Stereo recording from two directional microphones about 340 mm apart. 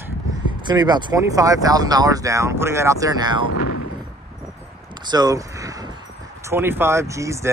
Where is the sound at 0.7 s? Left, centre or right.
Centre.